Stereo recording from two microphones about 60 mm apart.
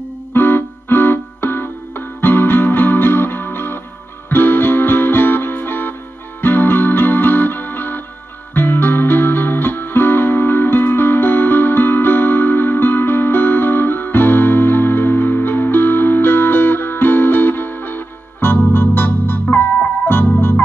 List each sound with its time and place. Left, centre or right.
0.3 s music: left